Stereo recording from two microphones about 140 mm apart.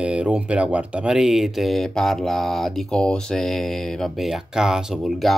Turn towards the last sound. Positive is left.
turn(degrees=0)  # may be behind; listen again after turning